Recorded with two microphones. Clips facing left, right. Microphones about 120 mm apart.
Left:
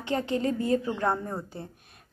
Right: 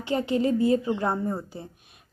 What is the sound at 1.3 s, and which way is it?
Speech, 5° right (ahead or behind).